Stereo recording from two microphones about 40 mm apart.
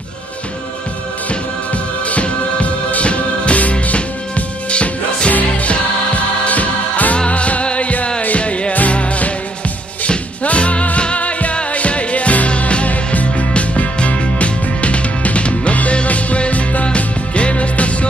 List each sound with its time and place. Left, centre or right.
2.0 s music: left